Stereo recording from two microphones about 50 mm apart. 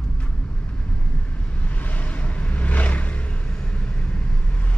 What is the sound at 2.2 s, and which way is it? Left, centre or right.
Vehicle, left.